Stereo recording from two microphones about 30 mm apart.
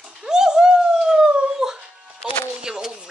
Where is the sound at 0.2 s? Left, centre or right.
Right.